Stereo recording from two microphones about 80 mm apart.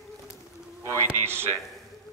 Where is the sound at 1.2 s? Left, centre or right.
Right.